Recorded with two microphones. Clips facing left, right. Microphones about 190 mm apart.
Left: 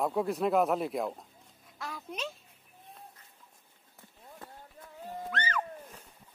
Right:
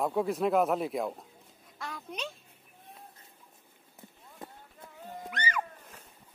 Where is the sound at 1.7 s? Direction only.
Centre (ahead or behind).